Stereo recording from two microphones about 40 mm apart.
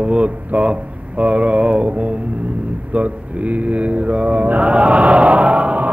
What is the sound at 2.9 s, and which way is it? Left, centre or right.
Mantra, right.